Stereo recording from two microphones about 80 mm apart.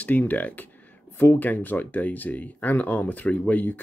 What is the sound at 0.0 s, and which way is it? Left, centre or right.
Speech, left.